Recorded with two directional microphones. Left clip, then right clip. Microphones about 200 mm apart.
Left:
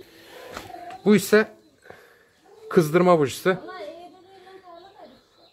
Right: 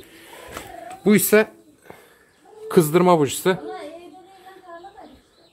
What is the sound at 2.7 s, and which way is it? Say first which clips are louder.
Speech: right 2 dB; centre (ahead or behind).